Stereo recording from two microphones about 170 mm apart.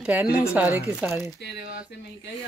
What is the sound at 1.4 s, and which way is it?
Speech, 75° left (ahead or behind).